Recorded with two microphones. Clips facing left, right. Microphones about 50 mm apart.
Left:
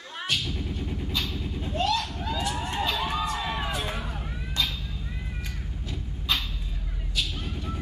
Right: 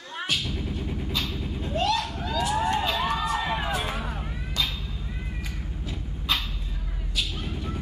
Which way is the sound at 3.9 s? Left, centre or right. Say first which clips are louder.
Right 2 dB; centre.